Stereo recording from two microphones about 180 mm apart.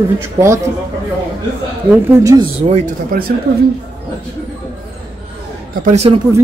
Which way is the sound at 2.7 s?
50° right (ahead or behind).